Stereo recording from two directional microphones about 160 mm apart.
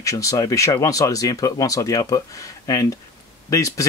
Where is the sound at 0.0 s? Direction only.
20° left (ahead or behind).